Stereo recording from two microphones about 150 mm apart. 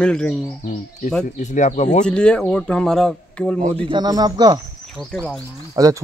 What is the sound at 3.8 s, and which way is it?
Speech, 30° right (ahead or behind).